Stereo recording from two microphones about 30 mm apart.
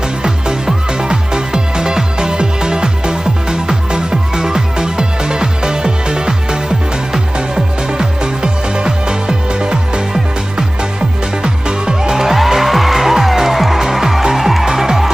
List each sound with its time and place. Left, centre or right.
1.0 s music: right
12.0 s music: centre